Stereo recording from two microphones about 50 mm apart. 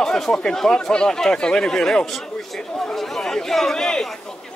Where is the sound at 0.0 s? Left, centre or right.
Centre.